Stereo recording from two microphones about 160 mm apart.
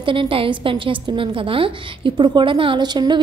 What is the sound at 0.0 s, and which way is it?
A woman's voice, 30° right (ahead or behind).